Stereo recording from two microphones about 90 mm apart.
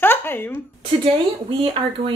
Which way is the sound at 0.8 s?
65° right (ahead or behind).